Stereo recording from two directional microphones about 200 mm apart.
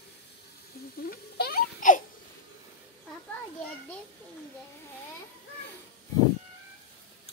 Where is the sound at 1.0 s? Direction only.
50° left (ahead or behind).